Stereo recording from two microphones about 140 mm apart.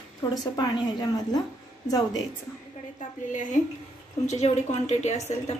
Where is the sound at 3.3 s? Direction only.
65° left (ahead or behind).